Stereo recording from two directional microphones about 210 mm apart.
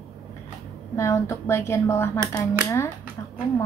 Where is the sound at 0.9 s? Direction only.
15° left (ahead or behind).